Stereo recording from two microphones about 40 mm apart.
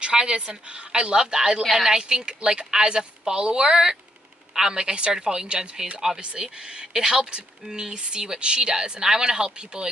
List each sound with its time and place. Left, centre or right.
0.0 s speech: right
1.6 s speech: centre
2.0 s speech: centre